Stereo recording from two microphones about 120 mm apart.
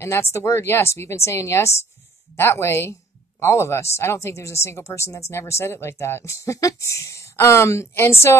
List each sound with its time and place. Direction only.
0.0 s speech: 20° left (ahead or behind)